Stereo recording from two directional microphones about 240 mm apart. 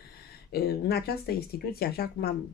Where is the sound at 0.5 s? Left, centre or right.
Left.